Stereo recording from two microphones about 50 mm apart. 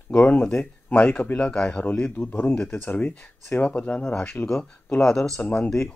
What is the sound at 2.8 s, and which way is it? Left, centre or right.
Speech, left.